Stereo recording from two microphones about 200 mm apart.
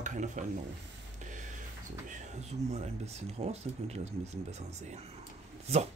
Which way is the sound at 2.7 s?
35° right (ahead or behind).